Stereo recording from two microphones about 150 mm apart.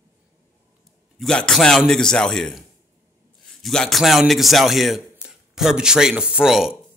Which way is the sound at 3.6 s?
Centre (ahead or behind).